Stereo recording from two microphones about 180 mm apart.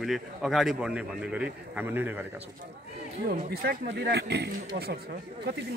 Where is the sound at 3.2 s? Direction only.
60° right (ahead or behind).